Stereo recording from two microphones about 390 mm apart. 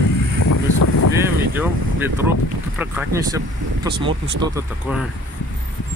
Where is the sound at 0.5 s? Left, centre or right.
Left.